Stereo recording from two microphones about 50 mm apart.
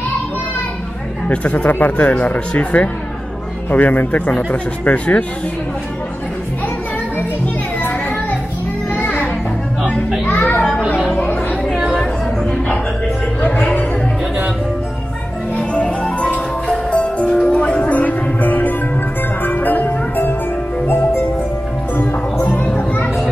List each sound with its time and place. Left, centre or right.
1.3 s speech: left
3.7 s a child's voice: left
8.9 s children playing: left
10.2 s a child's voice: left
12.0 s a sound: centre
15.5 s music: left
21.9 s music: left